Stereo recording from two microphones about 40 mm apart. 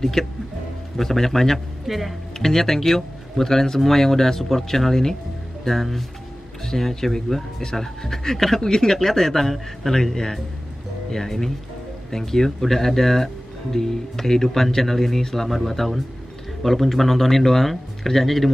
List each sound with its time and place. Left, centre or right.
0.0 s speech: centre
1.9 s a man's voice: centre
2.3 s a man's voice: centre